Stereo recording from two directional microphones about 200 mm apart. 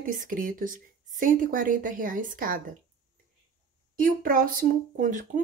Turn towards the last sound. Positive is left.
turn(degrees=-40)  # may be behind; listen again after turning